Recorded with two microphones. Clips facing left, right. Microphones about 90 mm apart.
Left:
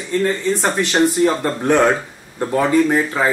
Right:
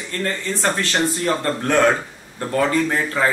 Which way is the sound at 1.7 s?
5° left (ahead or behind).